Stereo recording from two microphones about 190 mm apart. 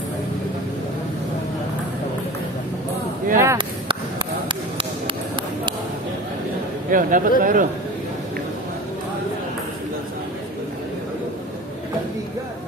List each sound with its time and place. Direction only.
3.3 s speech: 15° right (ahead or behind)
4.7 s a sound: 25° right (ahead or behind)
6.9 s speech: 45° right (ahead or behind)